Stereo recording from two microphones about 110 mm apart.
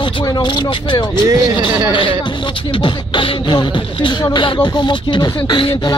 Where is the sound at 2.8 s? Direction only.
45° left (ahead or behind).